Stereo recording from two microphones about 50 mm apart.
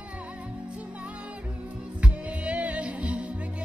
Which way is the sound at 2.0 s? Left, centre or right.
Right.